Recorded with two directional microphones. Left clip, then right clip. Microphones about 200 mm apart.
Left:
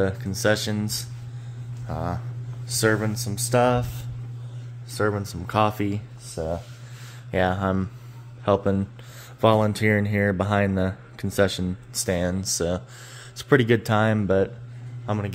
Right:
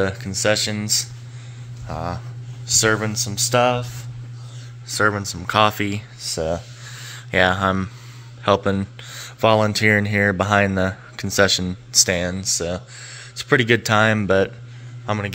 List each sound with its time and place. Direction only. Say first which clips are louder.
0.0 s speech: right 3 dB; 10° left (ahead or behind)
1.9 s a sound: right 3 dB; 15° left (ahead or behind)
3.0 s speech: right 6 dB; 10° left (ahead or behind)
4.8 s speech: right 6 dB; 5° left (ahead or behind)
6.3 s speech: right 5 dB; 15° right (ahead or behind)
7.2 s speech: right 6 dB; 5° left (ahead or behind)
12.4 s speech: right 2 dB; 20° left (ahead or behind); by 15.3 s 5° left (ahead or behind)